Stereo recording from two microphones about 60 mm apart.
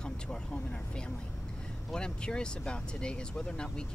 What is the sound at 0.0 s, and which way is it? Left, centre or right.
Speech, centre.